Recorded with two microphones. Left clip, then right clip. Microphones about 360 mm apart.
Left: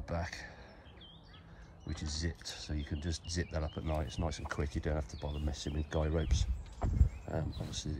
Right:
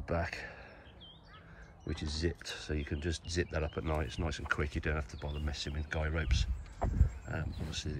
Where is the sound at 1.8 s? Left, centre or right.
Centre.